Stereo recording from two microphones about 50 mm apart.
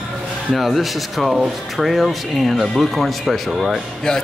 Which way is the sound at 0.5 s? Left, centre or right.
Centre.